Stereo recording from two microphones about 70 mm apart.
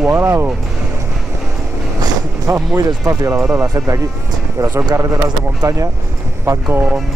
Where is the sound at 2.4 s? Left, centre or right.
Right.